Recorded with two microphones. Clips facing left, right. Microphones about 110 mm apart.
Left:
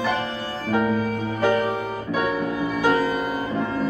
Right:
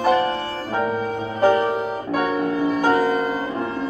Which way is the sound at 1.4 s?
35° right (ahead or behind).